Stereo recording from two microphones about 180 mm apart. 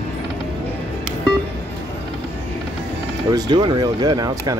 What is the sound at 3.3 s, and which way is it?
Speech, 25° right (ahead or behind).